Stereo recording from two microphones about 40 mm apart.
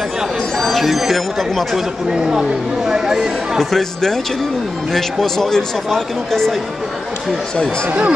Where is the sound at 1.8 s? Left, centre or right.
Centre.